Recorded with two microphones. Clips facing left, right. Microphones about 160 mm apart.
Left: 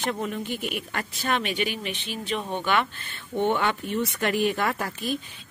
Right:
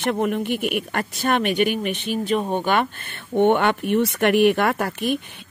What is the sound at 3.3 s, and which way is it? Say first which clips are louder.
Speech: right 7 dB; 60° right (ahead or behind).